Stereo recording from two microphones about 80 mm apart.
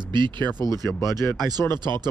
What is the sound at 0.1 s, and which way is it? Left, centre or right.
Speech, right.